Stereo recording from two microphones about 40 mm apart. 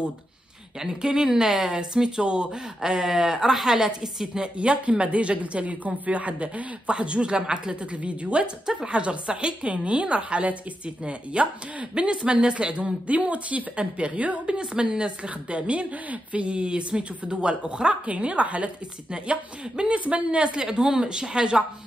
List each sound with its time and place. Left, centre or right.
0.7 s speech: centre
4.6 s speech: right
14.4 s speech: right
19.9 s speech: right